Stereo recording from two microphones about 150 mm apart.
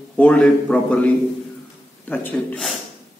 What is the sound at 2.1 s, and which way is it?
Speech, 10° left (ahead or behind).